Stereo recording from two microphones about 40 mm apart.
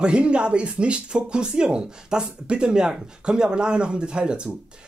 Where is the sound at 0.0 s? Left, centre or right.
Right.